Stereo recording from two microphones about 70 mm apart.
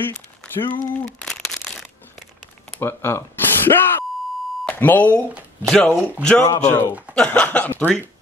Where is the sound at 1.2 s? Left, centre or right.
Centre.